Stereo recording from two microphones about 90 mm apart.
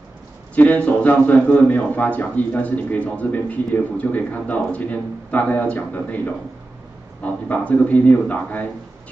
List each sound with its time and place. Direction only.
0.6 s speech: 15° left (ahead or behind)